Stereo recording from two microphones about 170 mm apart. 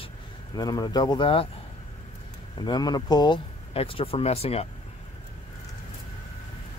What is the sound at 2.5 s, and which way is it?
Speech, 25° left (ahead or behind).